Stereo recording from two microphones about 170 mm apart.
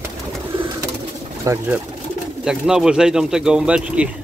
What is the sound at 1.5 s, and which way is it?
Speech, 20° right (ahead or behind).